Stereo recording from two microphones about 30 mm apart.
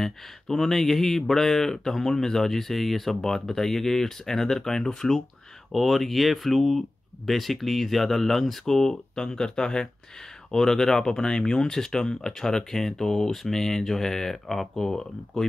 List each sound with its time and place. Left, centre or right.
0.0 s speech: centre
5.7 s speech: centre
8.7 s speech: centre